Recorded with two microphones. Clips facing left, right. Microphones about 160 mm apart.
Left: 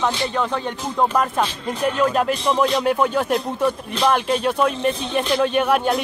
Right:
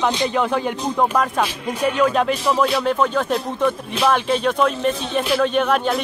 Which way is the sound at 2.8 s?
10° left (ahead or behind).